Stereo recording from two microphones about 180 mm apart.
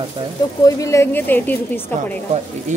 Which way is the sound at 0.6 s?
15° left (ahead or behind).